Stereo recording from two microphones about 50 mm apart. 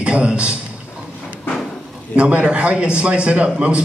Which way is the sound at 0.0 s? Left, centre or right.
Right.